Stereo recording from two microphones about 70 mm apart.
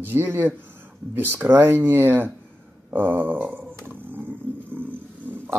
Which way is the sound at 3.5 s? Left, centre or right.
Right.